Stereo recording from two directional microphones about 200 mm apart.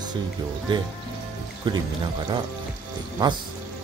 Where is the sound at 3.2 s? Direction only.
20° right (ahead or behind).